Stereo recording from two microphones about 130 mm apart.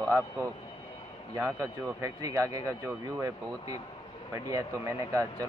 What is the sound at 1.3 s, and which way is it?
Speech, 25° right (ahead or behind).